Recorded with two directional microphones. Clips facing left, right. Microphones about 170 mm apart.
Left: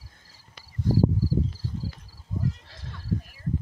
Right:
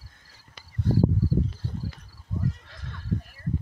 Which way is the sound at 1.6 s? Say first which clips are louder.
Even; 60° right (ahead or behind).